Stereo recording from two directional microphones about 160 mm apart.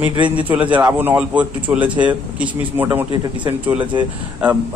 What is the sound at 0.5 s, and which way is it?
A man's voice, 10° right (ahead or behind).